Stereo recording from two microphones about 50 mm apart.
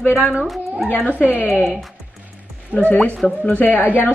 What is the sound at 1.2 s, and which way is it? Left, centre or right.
Speech, left.